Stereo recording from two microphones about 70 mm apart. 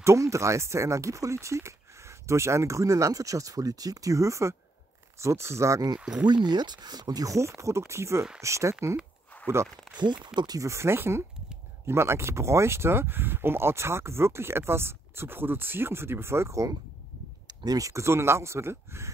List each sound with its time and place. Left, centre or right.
0.0 s speech: right
5.9 s speech: centre
6.2 s speech: right
9.9 s speech: right
10.6 s speech: right
17.5 s speech: right